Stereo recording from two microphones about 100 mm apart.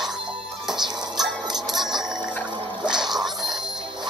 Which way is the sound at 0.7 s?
45° right (ahead or behind).